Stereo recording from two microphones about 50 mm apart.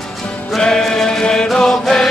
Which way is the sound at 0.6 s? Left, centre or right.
Centre.